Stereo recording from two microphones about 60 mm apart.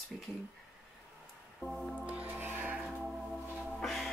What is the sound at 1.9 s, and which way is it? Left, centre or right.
Music, centre.